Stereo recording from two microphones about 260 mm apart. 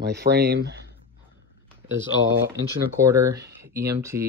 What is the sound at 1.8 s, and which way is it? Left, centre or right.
Speech, centre.